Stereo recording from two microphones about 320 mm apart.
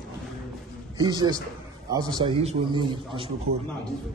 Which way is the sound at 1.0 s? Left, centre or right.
Centre.